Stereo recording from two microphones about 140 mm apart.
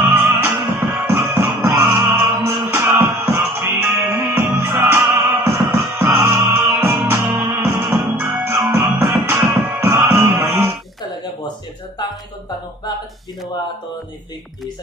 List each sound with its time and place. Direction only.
0.0 s music: 15° right (ahead or behind)